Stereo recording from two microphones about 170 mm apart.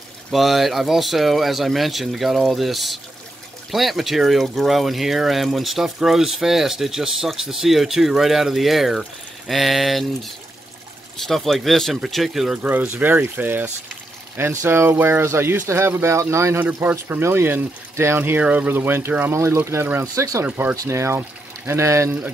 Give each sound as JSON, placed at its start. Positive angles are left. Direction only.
{"t": 0.3, "sound": "speech", "side_deg": 0}